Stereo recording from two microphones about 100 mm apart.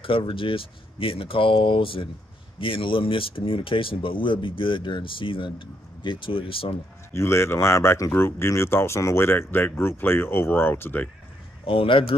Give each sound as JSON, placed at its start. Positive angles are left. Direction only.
{"t": 0.0, "sound": "speech", "side_deg": 60}
{"t": 7.2, "sound": "speech", "side_deg": 25}
{"t": 11.6, "sound": "speech", "side_deg": 65}